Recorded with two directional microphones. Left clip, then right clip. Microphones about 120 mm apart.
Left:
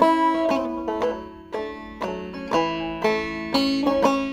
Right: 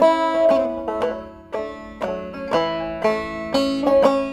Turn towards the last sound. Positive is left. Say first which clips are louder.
# right 4 dB
turn(degrees=25)  # may be behind; listen again after turning